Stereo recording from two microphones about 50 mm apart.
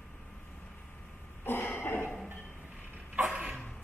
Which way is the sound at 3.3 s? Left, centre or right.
Right.